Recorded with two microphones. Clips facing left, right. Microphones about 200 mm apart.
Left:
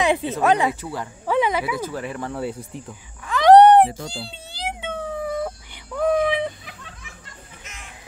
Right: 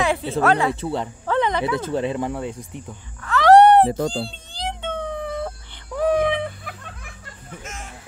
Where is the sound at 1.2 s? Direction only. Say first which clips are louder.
Left 1 dB; 10° left (ahead or behind).